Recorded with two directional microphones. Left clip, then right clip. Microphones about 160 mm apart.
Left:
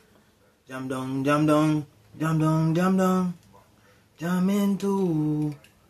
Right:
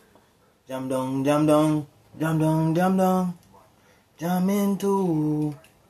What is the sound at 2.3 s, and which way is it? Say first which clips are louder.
Mantra: right 2 dB; 10° left (ahead or behind).